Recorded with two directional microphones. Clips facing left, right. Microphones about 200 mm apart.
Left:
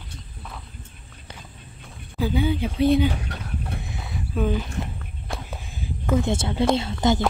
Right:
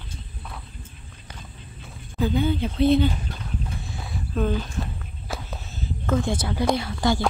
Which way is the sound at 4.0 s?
Centre (ahead or behind).